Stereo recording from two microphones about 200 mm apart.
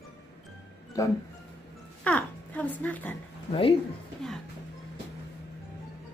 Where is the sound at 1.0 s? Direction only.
15° left (ahead or behind).